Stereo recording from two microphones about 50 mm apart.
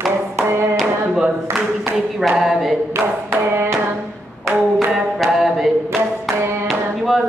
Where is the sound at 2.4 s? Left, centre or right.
Centre.